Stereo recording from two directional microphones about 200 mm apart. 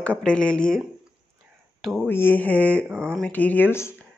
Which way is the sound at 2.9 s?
10° right (ahead or behind).